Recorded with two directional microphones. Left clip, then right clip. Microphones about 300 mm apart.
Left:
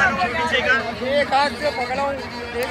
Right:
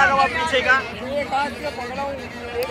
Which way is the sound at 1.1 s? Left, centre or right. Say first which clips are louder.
Left 4 dB; left.